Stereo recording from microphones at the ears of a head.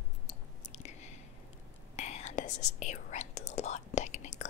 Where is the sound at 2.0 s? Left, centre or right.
Left.